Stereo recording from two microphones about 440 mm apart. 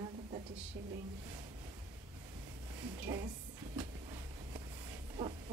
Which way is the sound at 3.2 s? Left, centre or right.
Centre.